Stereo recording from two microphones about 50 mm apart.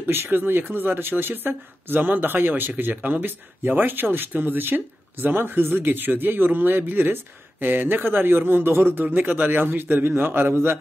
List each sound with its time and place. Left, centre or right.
0.0 s a man's voice: right